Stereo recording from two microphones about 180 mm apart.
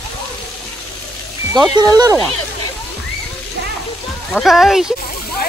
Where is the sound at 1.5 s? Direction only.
20° right (ahead or behind).